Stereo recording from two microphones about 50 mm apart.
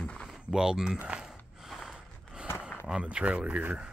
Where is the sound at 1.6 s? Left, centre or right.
Centre.